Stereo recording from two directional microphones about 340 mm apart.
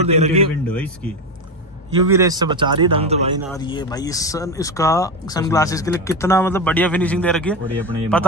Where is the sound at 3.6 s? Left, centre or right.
Centre.